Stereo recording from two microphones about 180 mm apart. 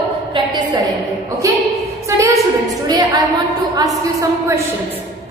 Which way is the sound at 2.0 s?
15° right (ahead or behind).